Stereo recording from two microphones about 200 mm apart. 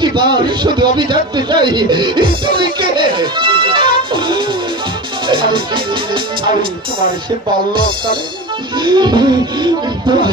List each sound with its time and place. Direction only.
0.0 s a man's voice: 20° right (ahead or behind)
8.7 s a man's voice: 25° right (ahead or behind)